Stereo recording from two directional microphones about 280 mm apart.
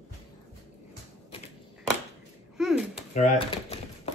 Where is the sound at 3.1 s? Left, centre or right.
Left.